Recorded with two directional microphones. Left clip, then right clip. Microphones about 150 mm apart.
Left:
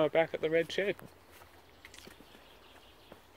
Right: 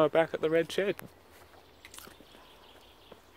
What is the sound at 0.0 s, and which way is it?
Speech, 50° right (ahead or behind).